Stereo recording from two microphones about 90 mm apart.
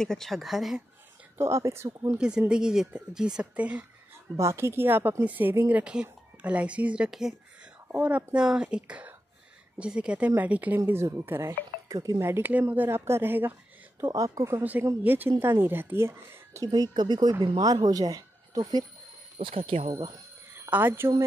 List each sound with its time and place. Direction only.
0.0 s speech: 5° left (ahead or behind)
1.4 s a woman's voice: 30° right (ahead or behind)
2.0 s speech: 10° right (ahead or behind)
4.4 s a woman's voice: 30° right (ahead or behind); by 7.3 s 5° right (ahead or behind)
7.9 s a woman's voice: 20° right (ahead or behind)
11.9 s speech: 40° right (ahead or behind)
12.2 s a woman's voice: 25° right (ahead or behind)
14.0 s a woman's voice: 40° right (ahead or behind)
14.6 s a woman's voice: 20° right (ahead or behind)
16.6 s speech: 45° right (ahead or behind)
19.4 s speech: 85° right
20.5 s speech: 25° right (ahead or behind)